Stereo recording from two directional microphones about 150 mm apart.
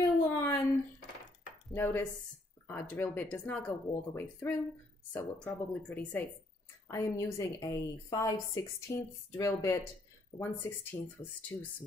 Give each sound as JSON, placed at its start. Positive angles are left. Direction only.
{"t": 0.0, "sound": "a sound", "side_deg": 20}
{"t": 1.7, "sound": "speech", "side_deg": 15}
{"t": 6.9, "sound": "a woman's voice", "side_deg": 20}